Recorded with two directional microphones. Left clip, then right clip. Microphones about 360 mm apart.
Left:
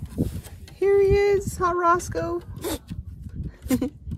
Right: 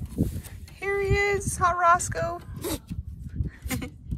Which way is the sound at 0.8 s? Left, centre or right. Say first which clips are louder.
Left 6 dB; centre.